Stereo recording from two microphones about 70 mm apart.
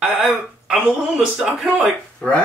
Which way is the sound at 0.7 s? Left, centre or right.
Centre.